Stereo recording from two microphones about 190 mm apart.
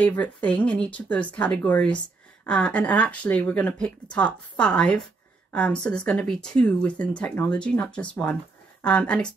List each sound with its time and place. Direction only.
0.0 s speech: 10° left (ahead or behind)